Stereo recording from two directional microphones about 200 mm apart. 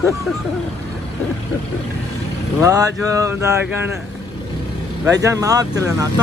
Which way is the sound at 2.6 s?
15° right (ahead or behind).